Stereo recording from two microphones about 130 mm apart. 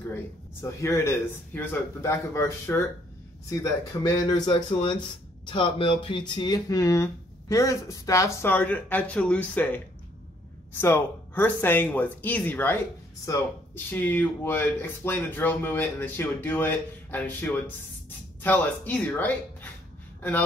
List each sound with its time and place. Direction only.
0.1 s speech: 20° left (ahead or behind)
4.0 s speech: 35° left (ahead or behind); by 12.7 s 15° left (ahead or behind)
13.8 s speech: 15° left (ahead or behind)